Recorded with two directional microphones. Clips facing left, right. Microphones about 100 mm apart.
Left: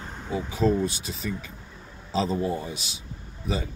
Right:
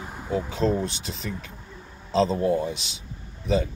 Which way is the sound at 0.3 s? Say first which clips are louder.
Even; 5° left (ahead or behind).